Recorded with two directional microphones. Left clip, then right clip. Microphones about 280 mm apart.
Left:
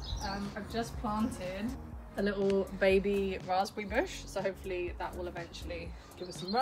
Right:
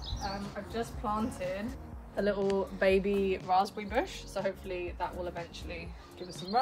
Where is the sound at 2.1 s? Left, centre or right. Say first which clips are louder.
Right 1 dB; right.